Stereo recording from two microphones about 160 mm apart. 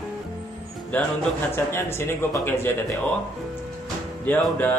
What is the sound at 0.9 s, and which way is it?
Mantra, 10° left (ahead or behind).